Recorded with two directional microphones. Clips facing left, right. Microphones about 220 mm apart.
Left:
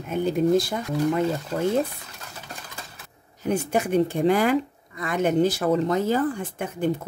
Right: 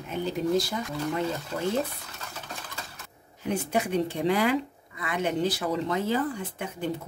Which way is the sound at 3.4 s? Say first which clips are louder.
Left 4 dB; 45° left (ahead or behind).